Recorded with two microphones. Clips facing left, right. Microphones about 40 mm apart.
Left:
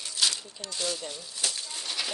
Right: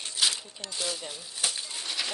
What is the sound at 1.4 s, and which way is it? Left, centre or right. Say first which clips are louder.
Bird: right 1 dB; right.